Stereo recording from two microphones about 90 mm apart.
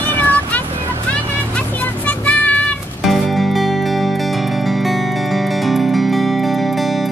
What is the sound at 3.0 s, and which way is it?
Music, centre (ahead or behind).